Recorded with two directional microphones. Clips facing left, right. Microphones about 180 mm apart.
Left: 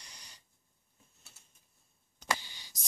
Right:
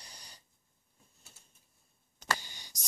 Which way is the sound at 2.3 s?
45° right (ahead or behind).